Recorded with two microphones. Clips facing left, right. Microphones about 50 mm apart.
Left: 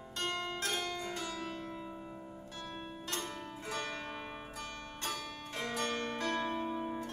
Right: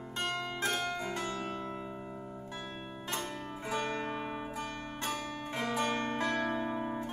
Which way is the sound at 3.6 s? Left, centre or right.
Right.